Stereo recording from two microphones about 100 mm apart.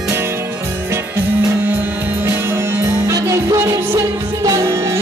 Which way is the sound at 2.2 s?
25° right (ahead or behind).